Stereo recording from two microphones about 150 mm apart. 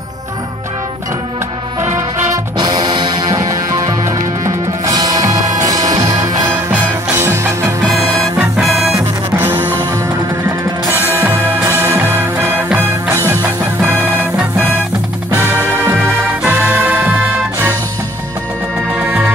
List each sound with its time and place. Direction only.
2.0 s music: 25° right (ahead or behind)
8.4 s music: 5° right (ahead or behind)
8.9 s music: 15° right (ahead or behind)
10.9 s music: 15° right (ahead or behind)
16.4 s music: 15° right (ahead or behind)
18.9 s music: 15° right (ahead or behind)